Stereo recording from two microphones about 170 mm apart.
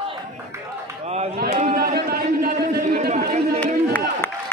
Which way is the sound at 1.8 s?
70° right (ahead or behind).